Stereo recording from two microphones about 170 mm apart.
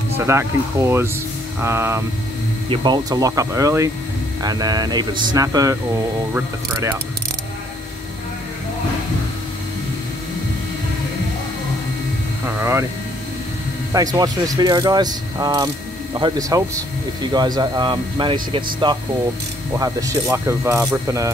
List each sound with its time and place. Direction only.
0.3 s speech: 15° right (ahead or behind)
2.7 s speech: 25° right (ahead or behind)
12.4 s a sound: 15° right (ahead or behind)
13.9 s speech: 20° right (ahead or behind)